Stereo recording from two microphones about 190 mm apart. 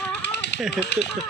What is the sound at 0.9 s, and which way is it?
Speech, 60° left (ahead or behind).